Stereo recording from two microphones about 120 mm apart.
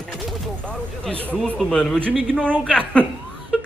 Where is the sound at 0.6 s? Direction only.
10° left (ahead or behind).